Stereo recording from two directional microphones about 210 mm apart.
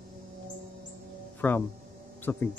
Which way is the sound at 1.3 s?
10° left (ahead or behind).